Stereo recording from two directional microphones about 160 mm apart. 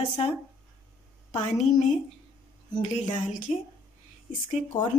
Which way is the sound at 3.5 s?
45° left (ahead or behind).